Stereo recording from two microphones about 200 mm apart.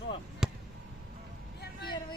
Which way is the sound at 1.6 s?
55° left (ahead or behind).